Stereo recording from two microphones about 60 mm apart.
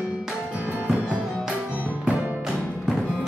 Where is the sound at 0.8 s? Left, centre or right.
Centre.